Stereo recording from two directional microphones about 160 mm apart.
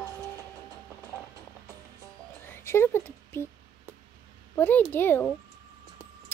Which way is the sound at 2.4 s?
15° left (ahead or behind).